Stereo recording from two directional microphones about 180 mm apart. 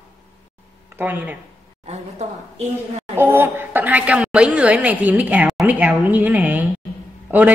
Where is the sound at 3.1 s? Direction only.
15° right (ahead or behind).